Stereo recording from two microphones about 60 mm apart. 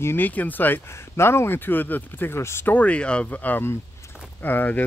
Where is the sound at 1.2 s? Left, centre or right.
Left.